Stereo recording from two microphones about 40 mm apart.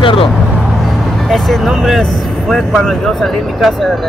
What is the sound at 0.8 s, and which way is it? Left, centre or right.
Speech, centre.